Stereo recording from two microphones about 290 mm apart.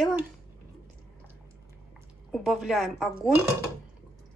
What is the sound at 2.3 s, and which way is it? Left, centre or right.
Speech, centre.